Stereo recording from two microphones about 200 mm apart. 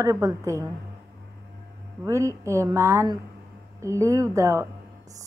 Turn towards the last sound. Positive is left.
turn(degrees=-15)  # may be behind; listen again after turning